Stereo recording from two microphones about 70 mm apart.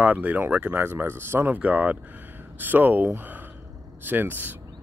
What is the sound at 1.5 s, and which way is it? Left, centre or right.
Speech, right.